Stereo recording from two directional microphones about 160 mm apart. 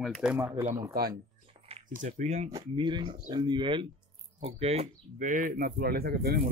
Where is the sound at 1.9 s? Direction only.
50° right (ahead or behind).